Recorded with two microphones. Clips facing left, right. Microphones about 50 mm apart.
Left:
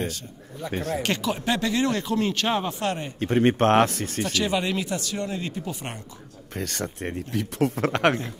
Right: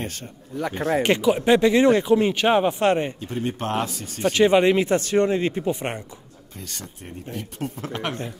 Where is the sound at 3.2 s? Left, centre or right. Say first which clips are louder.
Left 8 dB; left.